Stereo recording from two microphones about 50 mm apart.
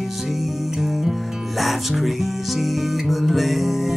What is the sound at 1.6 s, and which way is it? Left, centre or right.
Music, centre.